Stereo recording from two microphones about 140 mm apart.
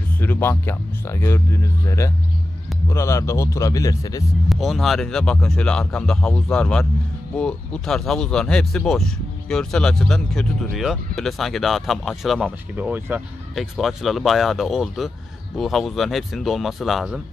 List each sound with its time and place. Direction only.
0.2 s a man's voice: 15° left (ahead or behind)
4.5 s speech: centre (ahead or behind)
13.6 s speech: centre (ahead or behind)